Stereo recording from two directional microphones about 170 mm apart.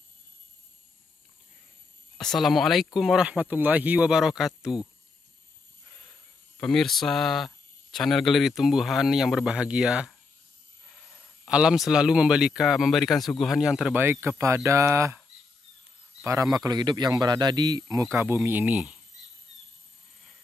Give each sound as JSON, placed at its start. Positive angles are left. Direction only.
{"t": 2.1, "sound": "speech", "side_deg": 0}
{"t": 6.6, "sound": "speech", "side_deg": 0}
{"t": 11.4, "sound": "speech", "side_deg": -5}
{"t": 16.3, "sound": "speech", "side_deg": -20}